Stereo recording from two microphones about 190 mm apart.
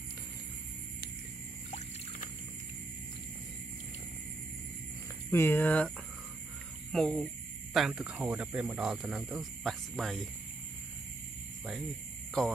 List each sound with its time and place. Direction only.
5.3 s speech: 10° left (ahead or behind)
12.4 s speech: 5° left (ahead or behind)